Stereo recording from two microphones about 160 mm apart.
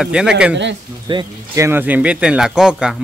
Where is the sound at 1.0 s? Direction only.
25° right (ahead or behind).